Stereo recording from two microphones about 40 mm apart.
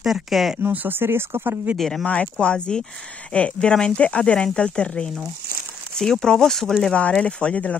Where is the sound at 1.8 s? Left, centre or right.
Centre.